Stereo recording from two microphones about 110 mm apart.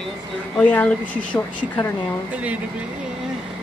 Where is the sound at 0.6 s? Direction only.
10° left (ahead or behind).